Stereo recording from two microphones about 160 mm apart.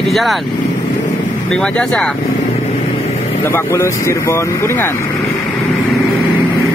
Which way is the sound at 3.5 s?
15° left (ahead or behind).